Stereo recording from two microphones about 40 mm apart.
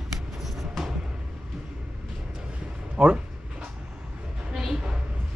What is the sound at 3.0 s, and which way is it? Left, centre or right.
Speech, right.